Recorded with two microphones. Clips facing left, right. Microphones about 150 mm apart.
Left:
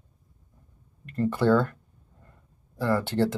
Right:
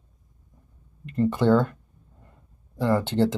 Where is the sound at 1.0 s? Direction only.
20° right (ahead or behind).